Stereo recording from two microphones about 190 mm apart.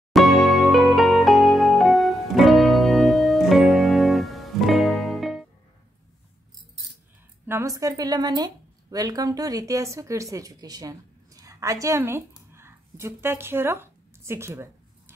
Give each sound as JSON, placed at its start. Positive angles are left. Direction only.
{"t": 0.1, "sound": "music", "side_deg": 0}
{"t": 7.4, "sound": "a woman's voice", "side_deg": -15}